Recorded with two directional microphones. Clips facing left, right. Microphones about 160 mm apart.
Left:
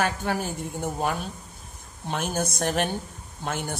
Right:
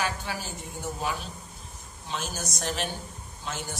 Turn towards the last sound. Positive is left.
turn(degrees=55)  # may be behind; listen again after turning